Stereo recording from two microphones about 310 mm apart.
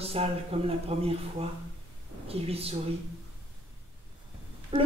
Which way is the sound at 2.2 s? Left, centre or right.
Centre.